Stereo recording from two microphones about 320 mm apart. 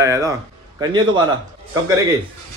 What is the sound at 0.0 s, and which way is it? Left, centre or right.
A woman's voice, centre.